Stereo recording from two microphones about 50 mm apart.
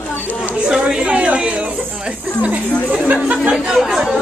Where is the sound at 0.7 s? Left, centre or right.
Centre.